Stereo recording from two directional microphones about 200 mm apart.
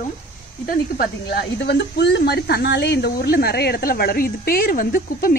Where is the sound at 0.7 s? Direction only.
50° left (ahead or behind).